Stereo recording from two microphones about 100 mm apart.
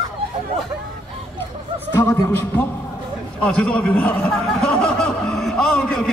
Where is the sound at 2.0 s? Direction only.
25° left (ahead or behind).